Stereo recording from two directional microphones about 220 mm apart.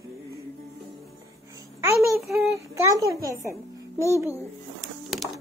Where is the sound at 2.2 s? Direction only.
Centre (ahead or behind).